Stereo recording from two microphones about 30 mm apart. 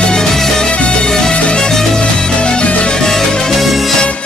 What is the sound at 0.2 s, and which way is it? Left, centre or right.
Music, centre.